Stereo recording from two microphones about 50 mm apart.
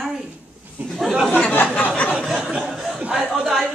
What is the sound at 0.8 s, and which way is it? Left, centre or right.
Speech, right.